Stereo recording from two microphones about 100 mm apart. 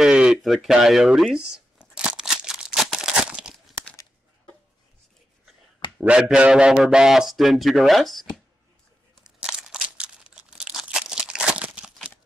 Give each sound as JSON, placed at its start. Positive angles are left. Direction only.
{"t": 0.0, "sound": "speech", "side_deg": -10}
{"t": 1.3, "sound": "crumpling", "side_deg": -5}
{"t": 5.9, "sound": "a man's voice", "side_deg": -10}
{"t": 9.2, "sound": "crumpling", "side_deg": -5}